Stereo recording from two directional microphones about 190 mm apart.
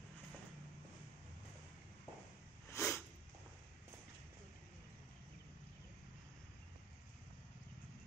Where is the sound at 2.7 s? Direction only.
10° left (ahead or behind).